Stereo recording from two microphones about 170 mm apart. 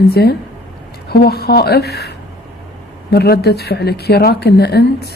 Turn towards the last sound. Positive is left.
turn(degrees=70)  # may be behind; listen again after turning